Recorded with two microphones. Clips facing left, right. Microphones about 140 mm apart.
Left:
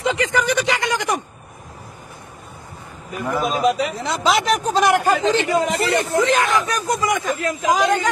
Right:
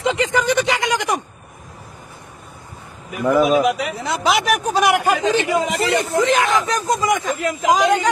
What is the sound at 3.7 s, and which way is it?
Speech, 10° right (ahead or behind).